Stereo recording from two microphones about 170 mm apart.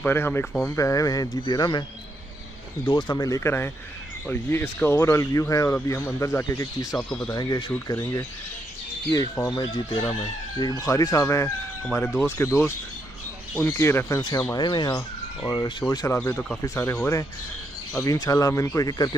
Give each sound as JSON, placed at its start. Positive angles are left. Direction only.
{"t": 0.0, "sound": "speech", "side_deg": 10}
{"t": 2.9, "sound": "speech", "side_deg": 25}
{"t": 7.0, "sound": "speech", "side_deg": 5}
{"t": 7.2, "sound": "speech", "side_deg": 25}
{"t": 16.2, "sound": "speech", "side_deg": 10}